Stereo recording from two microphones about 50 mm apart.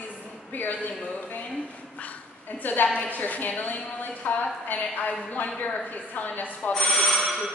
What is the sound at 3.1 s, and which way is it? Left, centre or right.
A woman's voice, left.